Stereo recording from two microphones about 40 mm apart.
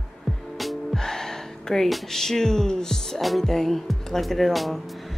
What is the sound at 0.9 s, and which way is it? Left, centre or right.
Speech, centre.